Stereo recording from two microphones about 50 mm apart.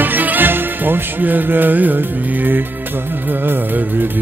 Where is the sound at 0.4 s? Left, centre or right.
Right.